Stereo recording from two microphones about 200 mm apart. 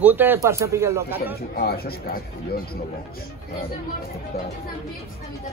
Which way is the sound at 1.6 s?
50° left (ahead or behind).